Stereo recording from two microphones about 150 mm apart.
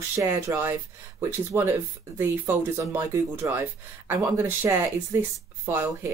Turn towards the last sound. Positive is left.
turn(degrees=-15)  # may be behind; listen again after turning